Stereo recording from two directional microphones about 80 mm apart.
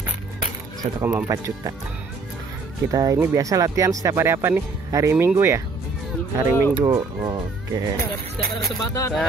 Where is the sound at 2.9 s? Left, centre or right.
Right.